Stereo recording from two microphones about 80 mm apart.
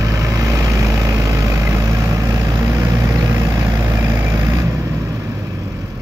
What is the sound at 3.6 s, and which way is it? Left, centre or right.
Vehicle, right.